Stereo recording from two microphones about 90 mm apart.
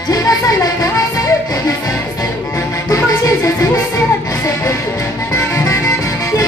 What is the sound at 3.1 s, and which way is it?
Music, 35° left (ahead or behind).